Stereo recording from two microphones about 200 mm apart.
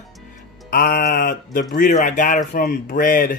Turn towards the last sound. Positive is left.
turn(degrees=45)  # may be behind; listen again after turning